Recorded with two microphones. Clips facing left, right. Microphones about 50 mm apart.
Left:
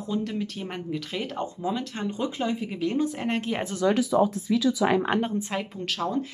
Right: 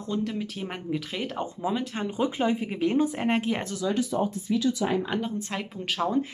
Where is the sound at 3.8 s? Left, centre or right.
Left.